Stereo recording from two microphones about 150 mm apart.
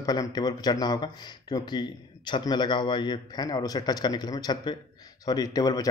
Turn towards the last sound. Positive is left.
turn(degrees=25)  # may be behind; listen again after turning